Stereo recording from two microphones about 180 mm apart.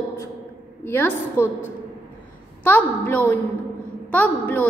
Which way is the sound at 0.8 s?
10° left (ahead or behind).